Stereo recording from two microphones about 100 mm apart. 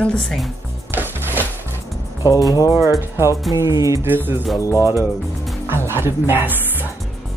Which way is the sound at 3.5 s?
30° right (ahead or behind).